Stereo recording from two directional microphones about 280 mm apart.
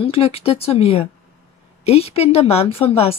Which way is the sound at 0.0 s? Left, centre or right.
Left.